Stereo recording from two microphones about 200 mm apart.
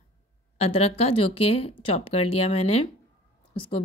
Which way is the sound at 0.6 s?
30° left (ahead or behind).